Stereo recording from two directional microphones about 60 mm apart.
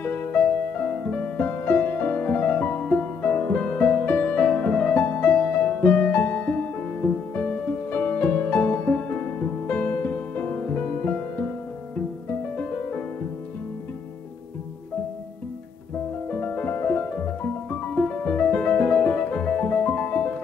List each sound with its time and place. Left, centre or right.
0.0 s music: left
4.9 s music: left
16.3 s music: left